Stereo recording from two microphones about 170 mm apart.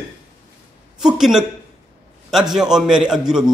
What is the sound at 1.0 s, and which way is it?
A man's voice, 5° right (ahead or behind).